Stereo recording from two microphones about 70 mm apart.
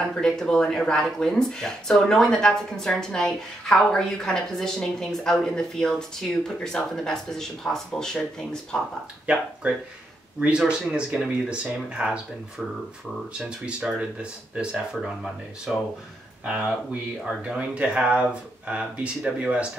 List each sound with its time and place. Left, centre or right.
0.2 s speech: centre
9.2 s speech: centre
13.5 s speech: centre